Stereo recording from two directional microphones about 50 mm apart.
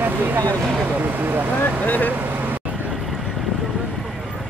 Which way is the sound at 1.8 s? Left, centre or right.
Left.